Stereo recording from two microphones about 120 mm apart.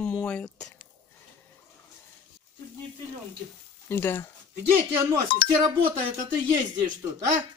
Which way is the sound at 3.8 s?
20° left (ahead or behind).